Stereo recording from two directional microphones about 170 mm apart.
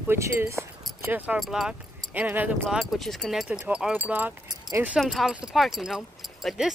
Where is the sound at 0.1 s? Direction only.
15° right (ahead or behind).